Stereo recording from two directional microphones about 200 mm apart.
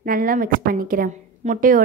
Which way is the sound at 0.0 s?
45° right (ahead or behind).